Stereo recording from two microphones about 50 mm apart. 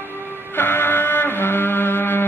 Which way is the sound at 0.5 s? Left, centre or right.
Left.